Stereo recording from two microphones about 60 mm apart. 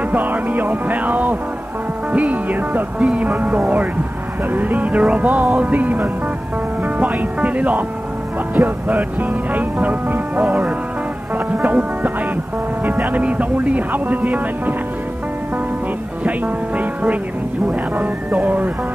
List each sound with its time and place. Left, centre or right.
0.1 s music: right
6.8 s speech: right
8.5 s music: right
11.3 s speech: right
13.0 s music: right
16.3 s speech: right
17.9 s music: right